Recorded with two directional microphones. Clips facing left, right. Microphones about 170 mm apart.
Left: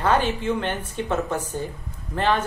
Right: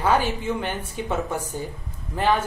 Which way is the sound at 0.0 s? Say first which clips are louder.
Left 1 dB; 10° right (ahead or behind).